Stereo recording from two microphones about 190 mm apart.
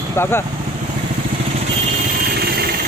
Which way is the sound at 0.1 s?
10° left (ahead or behind).